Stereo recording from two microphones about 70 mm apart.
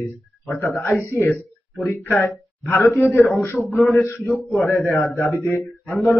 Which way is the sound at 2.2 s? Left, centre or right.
Left.